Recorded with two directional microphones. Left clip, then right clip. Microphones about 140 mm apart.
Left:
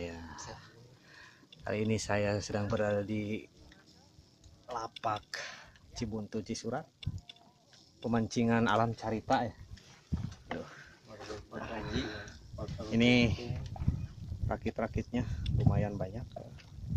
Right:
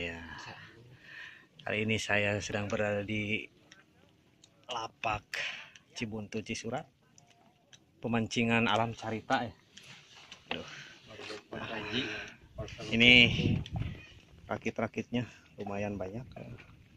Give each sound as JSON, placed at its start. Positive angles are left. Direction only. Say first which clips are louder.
{"t": 0.0, "sound": "a sound", "louder": "right 3 dB", "side_deg": 5}
{"t": 1.1, "sound": "speech", "louder": "right 7 dB", "side_deg": 5}
{"t": 4.6, "sound": "speech", "louder": "right 1 dB", "side_deg": 10}
{"t": 8.0, "sound": "speech", "louder": "even", "side_deg": -5}
{"t": 8.4, "sound": "speech", "louder": "right 2 dB", "side_deg": 5}
{"t": 8.7, "sound": "speech", "louder": "left 1 dB", "side_deg": 20}
{"t": 10.5, "sound": "speech", "louder": "right 2 dB", "side_deg": -10}
{"t": 11.5, "sound": "a man's voice", "louder": "right 3 dB", "side_deg": 0}
{"t": 12.9, "sound": "speech", "louder": "right 7 dB", "side_deg": 15}
{"t": 13.7, "sound": "a sound", "louder": "right 2 dB", "side_deg": -20}
{"t": 14.5, "sound": "speech", "louder": "right 1 dB", "side_deg": -20}